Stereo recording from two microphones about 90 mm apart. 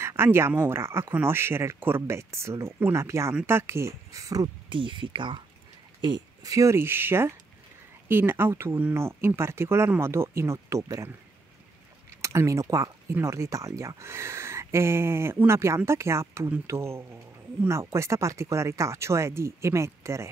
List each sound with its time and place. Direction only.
0.0 s speech: 30° right (ahead or behind)
4.6 s speech: 65° right (ahead or behind)
5.9 s a sound: 55° right (ahead or behind)
6.5 s speech: 30° right (ahead or behind)
12.1 s speech: 35° right (ahead or behind)